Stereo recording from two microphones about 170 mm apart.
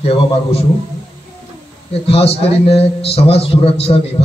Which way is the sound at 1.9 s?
35° left (ahead or behind).